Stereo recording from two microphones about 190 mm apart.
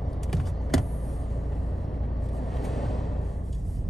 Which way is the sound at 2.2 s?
Centre (ahead or behind).